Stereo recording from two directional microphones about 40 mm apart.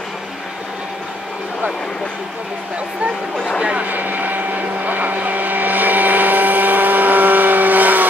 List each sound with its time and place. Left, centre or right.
3.8 s blender: right